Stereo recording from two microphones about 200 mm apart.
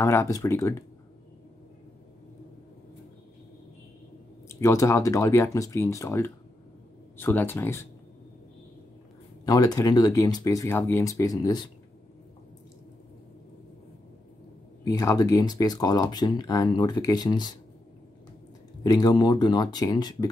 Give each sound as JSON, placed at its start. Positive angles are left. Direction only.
{"t": 0.0, "sound": "speech", "side_deg": 15}
{"t": 4.6, "sound": "speech", "side_deg": 15}
{"t": 9.4, "sound": "speech", "side_deg": 20}
{"t": 14.9, "sound": "speech", "side_deg": 15}
{"t": 18.8, "sound": "speech", "side_deg": 20}